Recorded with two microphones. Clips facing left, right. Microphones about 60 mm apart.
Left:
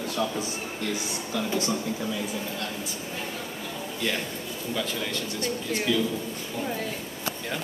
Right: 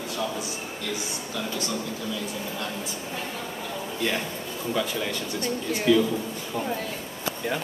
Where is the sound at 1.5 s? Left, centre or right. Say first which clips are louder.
Left 4 dB; left.